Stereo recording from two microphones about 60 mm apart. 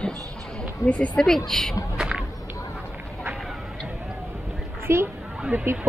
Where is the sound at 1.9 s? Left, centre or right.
Centre.